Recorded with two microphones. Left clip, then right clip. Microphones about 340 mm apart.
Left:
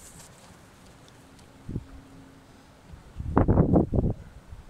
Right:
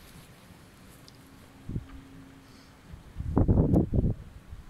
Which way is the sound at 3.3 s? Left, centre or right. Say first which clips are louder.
Left 4 dB; left.